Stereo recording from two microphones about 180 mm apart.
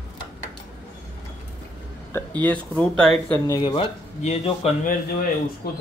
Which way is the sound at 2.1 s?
10° left (ahead or behind).